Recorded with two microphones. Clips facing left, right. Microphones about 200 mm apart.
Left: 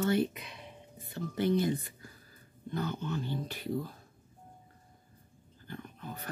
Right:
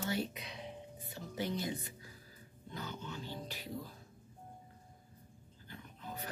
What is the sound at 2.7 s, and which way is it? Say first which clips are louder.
Speech: left 10 dB; 60° left (ahead or behind).